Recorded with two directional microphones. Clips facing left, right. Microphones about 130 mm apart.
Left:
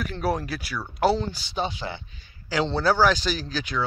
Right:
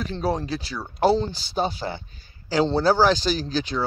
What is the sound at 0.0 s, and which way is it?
Speech, 25° right (ahead or behind).